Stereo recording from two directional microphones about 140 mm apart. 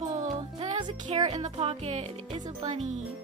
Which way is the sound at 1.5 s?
45° right (ahead or behind).